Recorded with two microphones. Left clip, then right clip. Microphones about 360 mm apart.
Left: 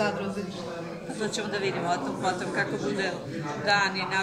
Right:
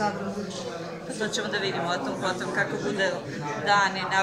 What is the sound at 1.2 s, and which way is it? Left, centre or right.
Speech, centre.